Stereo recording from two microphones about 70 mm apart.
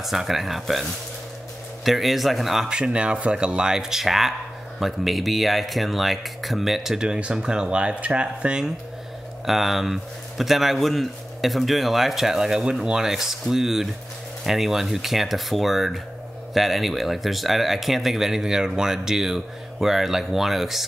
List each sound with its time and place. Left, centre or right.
0.0 s speech: centre
1.9 s speech: centre
2.8 s speech: centre